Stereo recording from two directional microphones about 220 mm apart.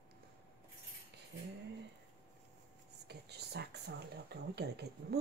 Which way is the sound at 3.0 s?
50° right (ahead or behind).